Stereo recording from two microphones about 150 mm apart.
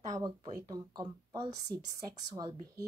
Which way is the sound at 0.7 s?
30° right (ahead or behind).